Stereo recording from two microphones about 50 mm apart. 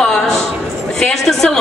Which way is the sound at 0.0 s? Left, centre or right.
Centre.